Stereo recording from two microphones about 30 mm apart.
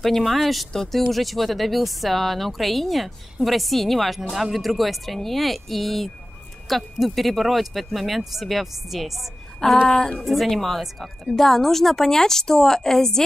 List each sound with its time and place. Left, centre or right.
0.0 s speech: centre
9.6 s speech: left
10.2 s a woman's voice: centre